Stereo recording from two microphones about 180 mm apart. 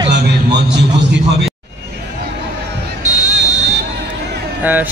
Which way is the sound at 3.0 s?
40° right (ahead or behind).